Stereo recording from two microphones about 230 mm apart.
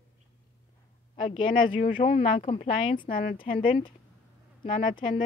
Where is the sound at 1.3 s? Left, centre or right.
Left.